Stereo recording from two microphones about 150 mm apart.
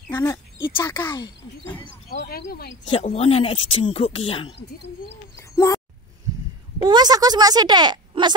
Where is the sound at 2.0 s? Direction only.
85° left.